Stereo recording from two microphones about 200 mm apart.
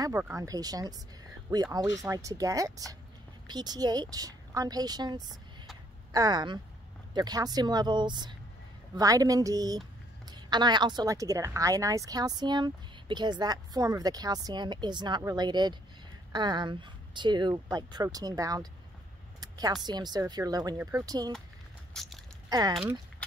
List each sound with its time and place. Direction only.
0.0 s a woman's voice: 15° right (ahead or behind)
21.9 s biting: centre (ahead or behind)
22.5 s speech: 20° right (ahead or behind)